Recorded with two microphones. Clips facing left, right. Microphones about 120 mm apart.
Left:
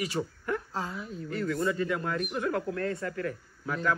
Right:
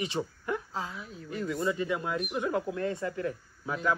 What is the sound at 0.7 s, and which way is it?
Speech, centre (ahead or behind).